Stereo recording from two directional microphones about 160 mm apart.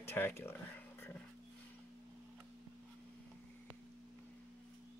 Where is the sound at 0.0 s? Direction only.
15° left (ahead or behind).